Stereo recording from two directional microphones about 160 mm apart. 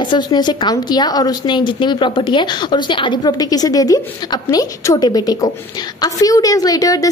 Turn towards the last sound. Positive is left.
turn(degrees=20)  # may be behind; listen again after turning